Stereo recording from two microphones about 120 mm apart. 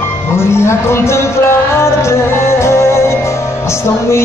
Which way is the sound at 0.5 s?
20° left (ahead or behind).